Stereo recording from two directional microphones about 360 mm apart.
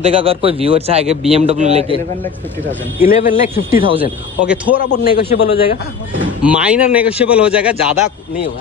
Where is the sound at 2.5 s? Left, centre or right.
Centre.